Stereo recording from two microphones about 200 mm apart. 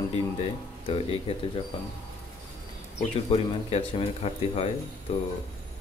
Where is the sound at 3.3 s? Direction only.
30° left (ahead or behind).